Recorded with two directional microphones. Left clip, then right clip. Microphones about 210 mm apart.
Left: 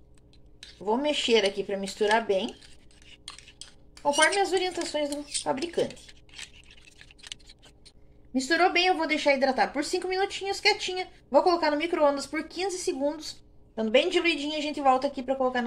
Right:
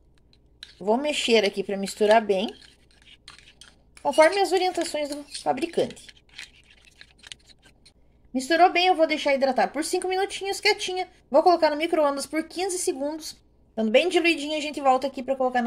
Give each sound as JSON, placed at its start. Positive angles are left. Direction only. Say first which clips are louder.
{"t": 0.8, "sound": "a woman's voice", "louder": "right 3 dB", "side_deg": -55}
{"t": 4.4, "sound": "a woman's voice", "louder": "right 4 dB", "side_deg": -50}
{"t": 8.3, "sound": "a woman's voice", "louder": "right 4 dB", "side_deg": -45}